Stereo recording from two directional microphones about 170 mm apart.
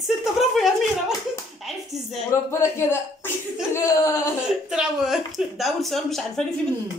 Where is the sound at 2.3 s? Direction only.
15° left (ahead or behind).